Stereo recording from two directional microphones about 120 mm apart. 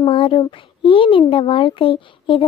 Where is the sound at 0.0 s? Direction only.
50° left (ahead or behind).